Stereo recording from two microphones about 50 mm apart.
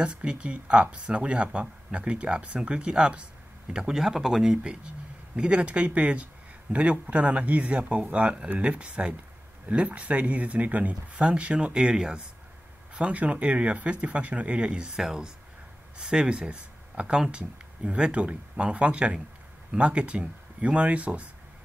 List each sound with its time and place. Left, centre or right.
0.0 s speech: centre
5.3 s speech: right
12.9 s speech: right